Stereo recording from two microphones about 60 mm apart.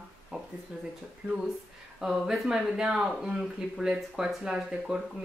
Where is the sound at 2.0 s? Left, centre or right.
Centre.